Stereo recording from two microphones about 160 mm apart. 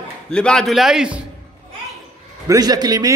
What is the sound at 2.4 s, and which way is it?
Speech, 25° right (ahead or behind).